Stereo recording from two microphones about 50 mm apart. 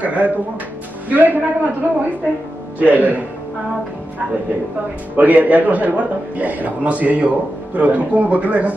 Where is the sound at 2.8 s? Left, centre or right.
Right.